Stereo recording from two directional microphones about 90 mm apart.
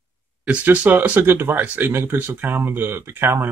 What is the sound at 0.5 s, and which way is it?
Speech, 15° right (ahead or behind).